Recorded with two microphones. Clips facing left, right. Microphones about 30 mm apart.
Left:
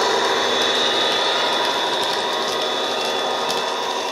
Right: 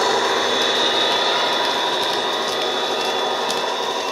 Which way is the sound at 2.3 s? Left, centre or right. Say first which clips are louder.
Even; centre.